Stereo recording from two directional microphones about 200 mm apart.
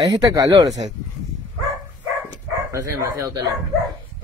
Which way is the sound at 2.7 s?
15° right (ahead or behind).